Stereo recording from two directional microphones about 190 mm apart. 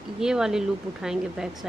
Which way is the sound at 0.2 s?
5° right (ahead or behind).